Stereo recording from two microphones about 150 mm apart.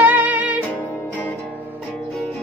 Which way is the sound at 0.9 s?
10° left (ahead or behind).